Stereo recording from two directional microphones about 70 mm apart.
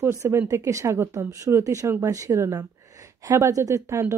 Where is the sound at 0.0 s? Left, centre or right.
Right.